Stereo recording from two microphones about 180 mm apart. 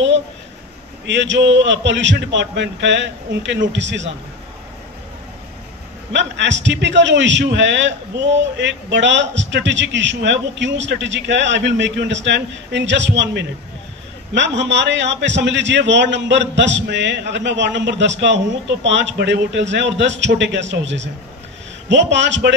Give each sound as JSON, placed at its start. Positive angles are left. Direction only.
{"t": 1.0, "sound": "a man's voice", "side_deg": -85}
{"t": 6.1, "sound": "a man's voice", "side_deg": -80}